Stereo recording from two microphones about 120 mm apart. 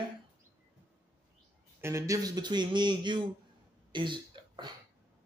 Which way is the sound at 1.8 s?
25° right (ahead or behind).